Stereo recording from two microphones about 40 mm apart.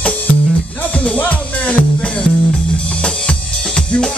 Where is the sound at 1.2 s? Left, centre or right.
Left.